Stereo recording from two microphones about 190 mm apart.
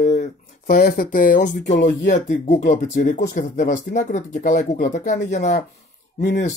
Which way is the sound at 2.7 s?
55° left (ahead or behind).